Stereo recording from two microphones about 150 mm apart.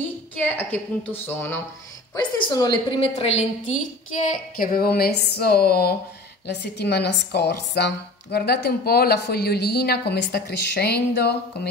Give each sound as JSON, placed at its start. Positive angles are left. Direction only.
{"t": 0.6, "sound": "a woman's voice", "side_deg": 15}
{"t": 2.1, "sound": "a woman's voice", "side_deg": 25}